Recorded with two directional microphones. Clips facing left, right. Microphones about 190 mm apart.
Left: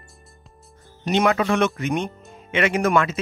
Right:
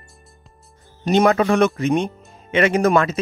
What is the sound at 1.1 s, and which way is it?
Speech, 40° right (ahead or behind).